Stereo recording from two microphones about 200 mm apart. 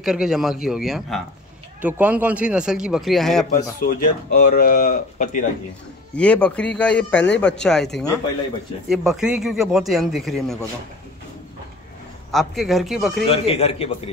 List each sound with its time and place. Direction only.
0.0 s a man's voice: centre (ahead or behind)
3.8 s speech: 45° left (ahead or behind)
6.1 s a man's voice: 5° left (ahead or behind)
12.3 s a man's voice: centre (ahead or behind)
13.3 s a man's voice: 30° left (ahead or behind)